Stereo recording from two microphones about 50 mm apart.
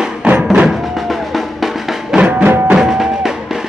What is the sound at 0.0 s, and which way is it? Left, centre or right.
Music, right.